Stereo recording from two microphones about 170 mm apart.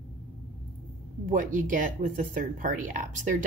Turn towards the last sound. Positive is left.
turn(degrees=-50)  # may be behind; listen again after turning